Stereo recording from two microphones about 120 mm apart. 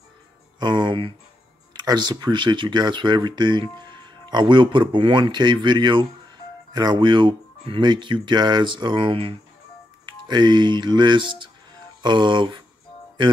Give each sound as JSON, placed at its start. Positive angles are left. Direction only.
{"t": 0.6, "sound": "speech", "side_deg": -40}